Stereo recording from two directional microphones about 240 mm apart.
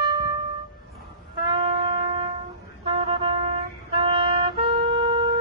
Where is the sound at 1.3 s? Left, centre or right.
Centre.